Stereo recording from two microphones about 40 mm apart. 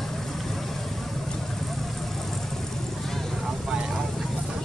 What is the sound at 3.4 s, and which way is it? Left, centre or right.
Vehicle, centre.